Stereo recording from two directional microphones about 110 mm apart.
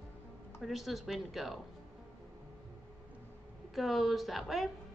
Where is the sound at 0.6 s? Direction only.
Centre (ahead or behind).